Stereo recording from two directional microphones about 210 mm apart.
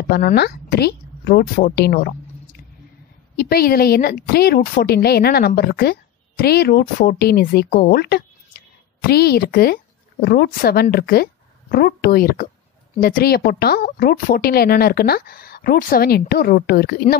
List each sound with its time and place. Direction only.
0.1 s a woman's voice: 50° left (ahead or behind)